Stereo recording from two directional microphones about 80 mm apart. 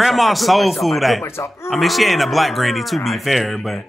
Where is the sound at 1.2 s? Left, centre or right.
Left.